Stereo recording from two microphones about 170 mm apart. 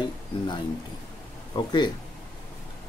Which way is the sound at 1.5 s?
20° left (ahead or behind).